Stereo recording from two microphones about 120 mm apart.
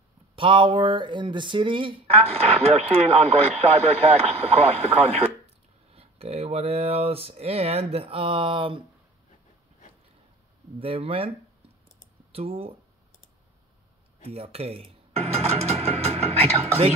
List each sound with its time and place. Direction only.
0.4 s speech: 45° right (ahead or behind)
10.8 s speech: 50° right (ahead or behind)
14.2 s music: 55° right (ahead or behind)